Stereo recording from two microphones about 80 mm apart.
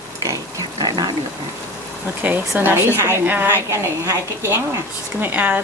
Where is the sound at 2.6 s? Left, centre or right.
Right.